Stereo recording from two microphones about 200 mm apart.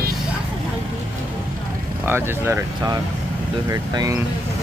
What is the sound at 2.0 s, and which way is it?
Speech, 10° right (ahead or behind).